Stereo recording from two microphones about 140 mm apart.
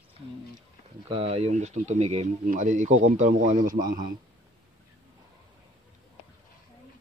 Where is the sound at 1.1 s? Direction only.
45° right (ahead or behind).